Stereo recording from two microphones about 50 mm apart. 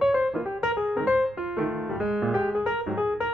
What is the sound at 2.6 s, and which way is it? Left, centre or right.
Music, right.